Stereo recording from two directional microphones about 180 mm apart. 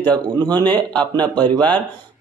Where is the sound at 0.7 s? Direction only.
10° left (ahead or behind).